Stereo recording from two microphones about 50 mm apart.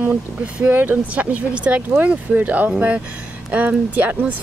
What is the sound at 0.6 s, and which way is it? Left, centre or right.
Speech, right.